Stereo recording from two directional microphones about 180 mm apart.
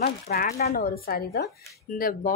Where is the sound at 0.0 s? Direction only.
55° left (ahead or behind).